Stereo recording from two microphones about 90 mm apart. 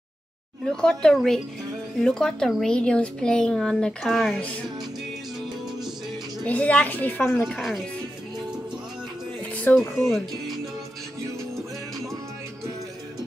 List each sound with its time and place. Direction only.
0.7 s speech: 10° left (ahead or behind)
6.4 s speech: 15° left (ahead or behind)
7.4 s speech: centre (ahead or behind)
9.4 s music: 15° left (ahead or behind)
10.0 s speech: centre (ahead or behind)